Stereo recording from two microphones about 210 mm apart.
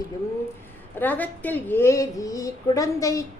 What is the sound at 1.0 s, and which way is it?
A woman's voice, 10° left (ahead or behind).